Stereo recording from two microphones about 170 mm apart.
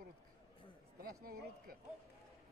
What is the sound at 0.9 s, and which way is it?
Speech, 60° right (ahead or behind).